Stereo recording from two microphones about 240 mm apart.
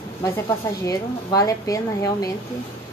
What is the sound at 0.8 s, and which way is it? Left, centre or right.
Speech, centre.